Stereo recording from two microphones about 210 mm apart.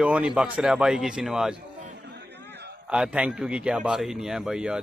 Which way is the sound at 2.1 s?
55° right (ahead or behind).